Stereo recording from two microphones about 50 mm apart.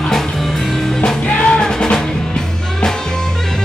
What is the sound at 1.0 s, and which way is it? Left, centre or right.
Music, left.